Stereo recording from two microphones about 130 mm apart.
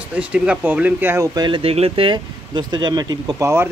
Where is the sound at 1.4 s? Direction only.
40° right (ahead or behind).